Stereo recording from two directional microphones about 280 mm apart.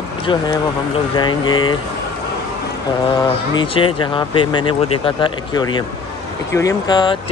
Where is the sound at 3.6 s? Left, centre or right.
Centre.